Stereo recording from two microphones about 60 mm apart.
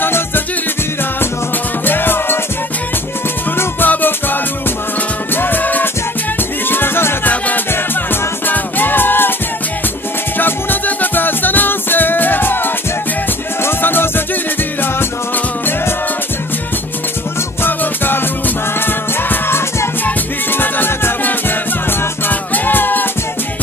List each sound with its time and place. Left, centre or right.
0.0 s music: left
1.9 s music: left
3.5 s music: left
7.2 s music: left
10.3 s music: left
13.7 s music: left
17.6 s music: left